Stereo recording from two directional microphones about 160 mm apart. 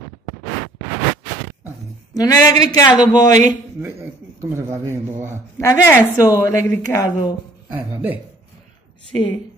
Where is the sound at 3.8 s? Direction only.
15° right (ahead or behind).